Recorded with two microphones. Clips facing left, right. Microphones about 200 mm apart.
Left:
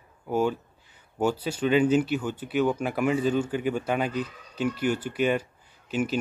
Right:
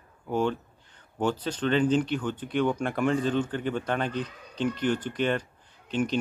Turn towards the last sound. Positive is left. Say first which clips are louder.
# even
turn(degrees=5)  # may be behind; listen again after turning